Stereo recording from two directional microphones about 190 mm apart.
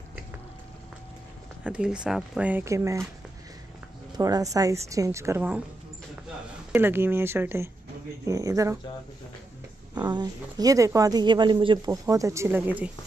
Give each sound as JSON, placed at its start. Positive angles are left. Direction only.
{"t": 1.6, "sound": "speech", "side_deg": -5}
{"t": 4.2, "sound": "speech", "side_deg": -20}
{"t": 6.7, "sound": "speech", "side_deg": -10}
{"t": 9.9, "sound": "speech", "side_deg": -20}